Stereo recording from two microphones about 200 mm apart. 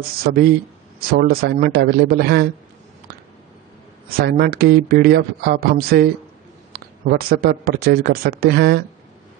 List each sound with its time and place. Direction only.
0.3 s speech: 50° right (ahead or behind)
4.3 s speech: 50° right (ahead or behind)